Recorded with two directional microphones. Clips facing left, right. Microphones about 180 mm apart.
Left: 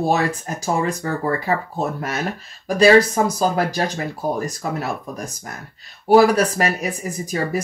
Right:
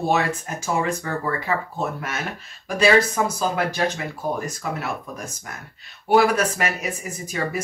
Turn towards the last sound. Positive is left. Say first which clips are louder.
# left 4 dB
turn(degrees=35)  # may be behind; listen again after turning